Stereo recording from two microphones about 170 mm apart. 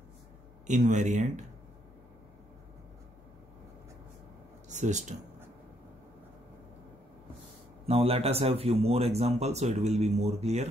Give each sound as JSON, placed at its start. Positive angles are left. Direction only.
{"t": 0.7, "sound": "speech", "side_deg": -45}
{"t": 4.6, "sound": "speech", "side_deg": -45}
{"t": 7.8, "sound": "speech", "side_deg": -35}